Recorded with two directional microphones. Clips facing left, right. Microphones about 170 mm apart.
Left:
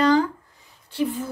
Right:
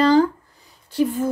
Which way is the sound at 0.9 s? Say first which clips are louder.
Right 5 dB; 45° right (ahead or behind).